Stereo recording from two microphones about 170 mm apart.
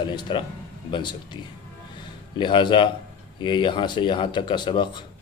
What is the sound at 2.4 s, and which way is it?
Speech, 30° left (ahead or behind).